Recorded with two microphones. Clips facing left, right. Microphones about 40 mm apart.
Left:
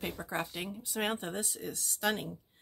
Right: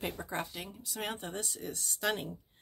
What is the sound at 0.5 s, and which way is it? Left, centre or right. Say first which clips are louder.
Speech: left 4 dB; centre.